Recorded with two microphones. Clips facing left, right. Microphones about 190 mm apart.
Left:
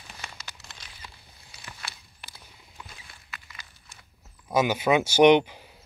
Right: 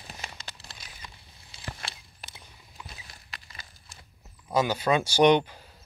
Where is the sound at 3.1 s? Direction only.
35° right (ahead or behind).